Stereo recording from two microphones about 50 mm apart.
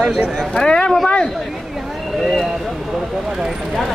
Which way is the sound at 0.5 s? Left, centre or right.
Centre.